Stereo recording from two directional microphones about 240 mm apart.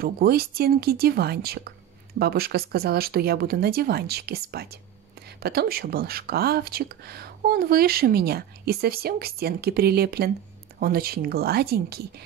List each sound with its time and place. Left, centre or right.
0.0 s speech: right